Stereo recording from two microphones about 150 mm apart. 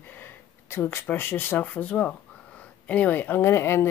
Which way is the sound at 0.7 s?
15° left (ahead or behind).